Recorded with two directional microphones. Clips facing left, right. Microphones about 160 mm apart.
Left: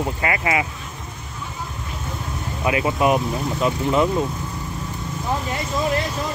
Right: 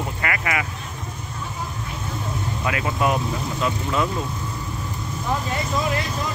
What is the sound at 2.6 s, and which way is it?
Speech, 20° left (ahead or behind).